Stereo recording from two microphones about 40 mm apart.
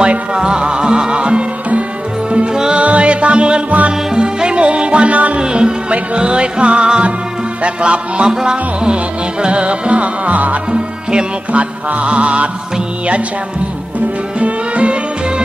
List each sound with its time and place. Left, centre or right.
0.0 s music: right
2.5 s music: centre
2.8 s music: right
5.4 s music: right
10.7 s speech: right
11.9 s music: right
14.4 s music: right